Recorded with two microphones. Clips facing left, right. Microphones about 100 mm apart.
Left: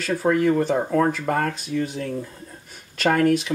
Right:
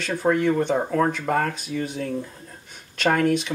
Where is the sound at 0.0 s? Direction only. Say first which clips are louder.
Left 1 dB; centre (ahead or behind).